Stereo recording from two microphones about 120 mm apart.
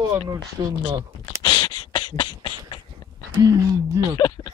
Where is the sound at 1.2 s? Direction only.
40° left (ahead or behind).